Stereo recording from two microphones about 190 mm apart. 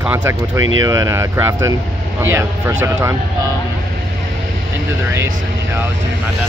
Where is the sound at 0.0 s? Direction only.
10° right (ahead or behind).